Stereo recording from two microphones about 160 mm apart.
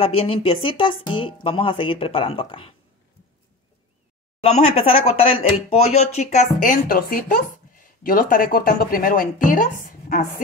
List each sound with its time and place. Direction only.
0.0 s speech: 40° left (ahead or behind)
4.4 s speech: 40° left (ahead or behind); by 10.2 s 65° left (ahead or behind)